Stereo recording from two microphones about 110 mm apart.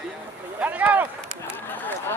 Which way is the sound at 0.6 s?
15° right (ahead or behind).